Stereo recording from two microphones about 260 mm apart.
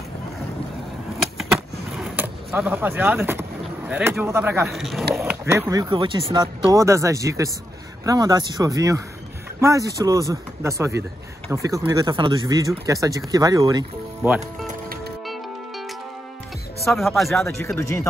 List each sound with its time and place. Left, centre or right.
1.4 s skateboard: centre
5.1 s speech: centre
14.7 s music: right
16.8 s speech: centre